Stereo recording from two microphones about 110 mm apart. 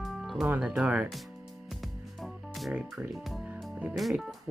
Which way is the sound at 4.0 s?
Centre (ahead or behind).